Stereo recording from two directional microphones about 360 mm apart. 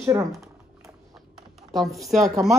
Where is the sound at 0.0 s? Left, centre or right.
Centre.